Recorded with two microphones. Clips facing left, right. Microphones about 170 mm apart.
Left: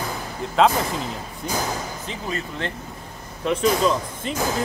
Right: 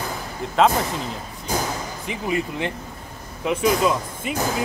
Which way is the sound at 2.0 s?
15° right (ahead or behind).